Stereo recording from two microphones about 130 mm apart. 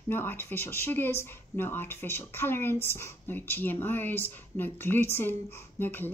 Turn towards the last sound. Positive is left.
turn(degrees=15)  # may be behind; listen again after turning